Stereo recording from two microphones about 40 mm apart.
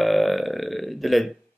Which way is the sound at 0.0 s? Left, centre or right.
Centre.